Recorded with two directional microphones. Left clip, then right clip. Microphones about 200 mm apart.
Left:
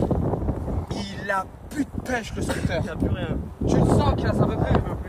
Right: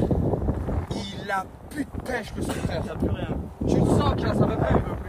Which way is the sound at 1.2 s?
30° left (ahead or behind).